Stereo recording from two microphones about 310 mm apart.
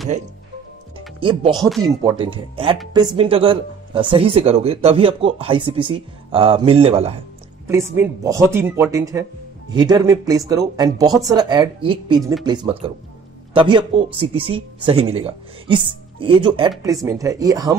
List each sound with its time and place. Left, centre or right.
1.2 s speech: centre
7.6 s speech: centre